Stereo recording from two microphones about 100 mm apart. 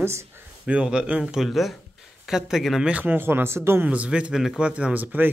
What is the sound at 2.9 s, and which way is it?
Speech, 20° right (ahead or behind).